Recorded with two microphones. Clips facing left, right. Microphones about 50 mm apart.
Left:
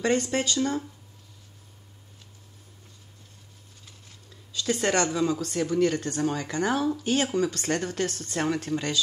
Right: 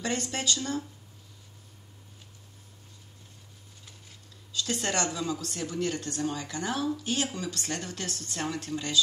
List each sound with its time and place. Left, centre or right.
0.0 s speech: left
4.6 s speech: left